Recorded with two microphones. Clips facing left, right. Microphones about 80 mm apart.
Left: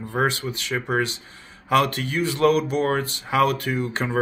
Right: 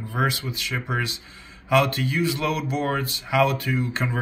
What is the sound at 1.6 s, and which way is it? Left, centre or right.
Speech, left.